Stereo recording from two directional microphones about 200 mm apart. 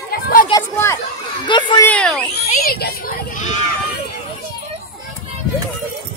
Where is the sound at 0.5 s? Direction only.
15° left (ahead or behind).